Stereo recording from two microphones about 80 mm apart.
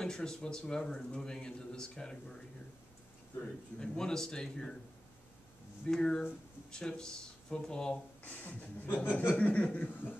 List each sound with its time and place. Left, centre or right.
0.0 s a man's voice: centre
3.8 s a man's voice: centre
5.9 s a man's voice: centre
9.0 s speech: left
9.4 s speech: centre